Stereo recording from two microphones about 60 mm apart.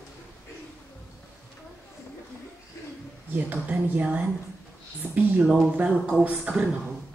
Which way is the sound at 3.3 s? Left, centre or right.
Right.